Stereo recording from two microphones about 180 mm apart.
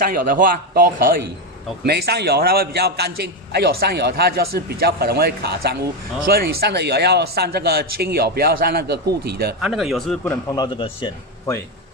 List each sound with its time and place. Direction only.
0.0 s a man's voice: 50° right (ahead or behind)
9.6 s speech: centre (ahead or behind)
10.5 s a man's voice: 25° left (ahead or behind)